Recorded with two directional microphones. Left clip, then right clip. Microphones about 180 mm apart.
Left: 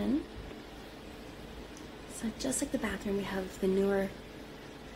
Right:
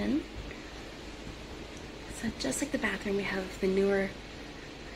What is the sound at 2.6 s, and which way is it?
A woman's voice, centre (ahead or behind).